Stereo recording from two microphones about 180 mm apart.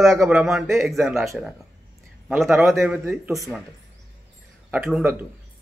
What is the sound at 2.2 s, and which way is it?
Speech, centre (ahead or behind).